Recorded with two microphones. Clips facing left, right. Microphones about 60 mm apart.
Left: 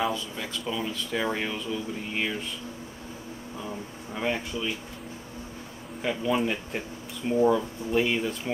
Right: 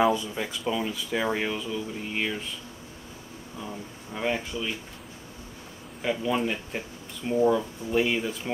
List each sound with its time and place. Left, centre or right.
0.1 s speech: centre
4.1 s speech: centre
6.0 s speech: centre